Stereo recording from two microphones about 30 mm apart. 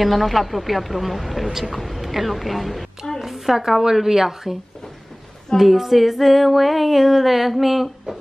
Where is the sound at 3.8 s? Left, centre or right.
Centre.